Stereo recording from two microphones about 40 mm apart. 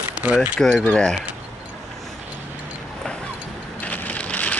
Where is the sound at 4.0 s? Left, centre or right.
Left.